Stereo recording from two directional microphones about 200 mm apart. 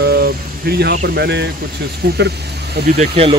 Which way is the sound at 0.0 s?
55° right (ahead or behind).